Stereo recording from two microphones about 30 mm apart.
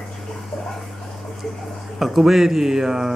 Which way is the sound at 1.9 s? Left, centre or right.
Centre.